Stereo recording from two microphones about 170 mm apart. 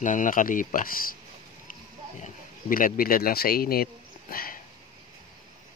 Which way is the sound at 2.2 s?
55° left (ahead or behind).